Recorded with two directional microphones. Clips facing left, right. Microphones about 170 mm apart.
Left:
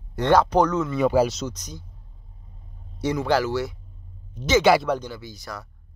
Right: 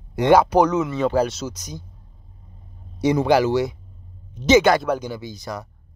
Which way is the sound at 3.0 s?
15° right (ahead or behind).